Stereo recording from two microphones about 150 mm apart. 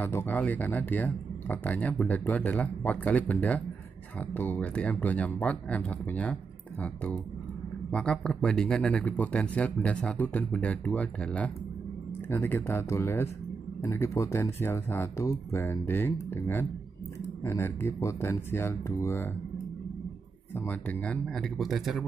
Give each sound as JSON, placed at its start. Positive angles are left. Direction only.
{"t": 0.0, "sound": "speech", "side_deg": 15}
{"t": 20.5, "sound": "speech", "side_deg": 10}